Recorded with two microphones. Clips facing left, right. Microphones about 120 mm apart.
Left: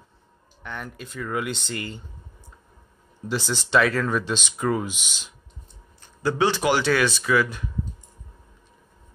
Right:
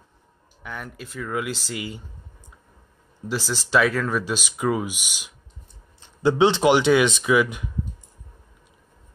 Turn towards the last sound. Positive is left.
turn(degrees=-15)  # may be behind; listen again after turning